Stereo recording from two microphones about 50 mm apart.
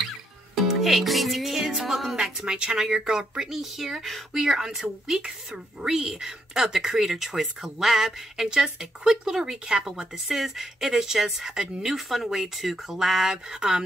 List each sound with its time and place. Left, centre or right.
0.7 s music: centre
2.4 s speech: centre
10.2 s speech: centre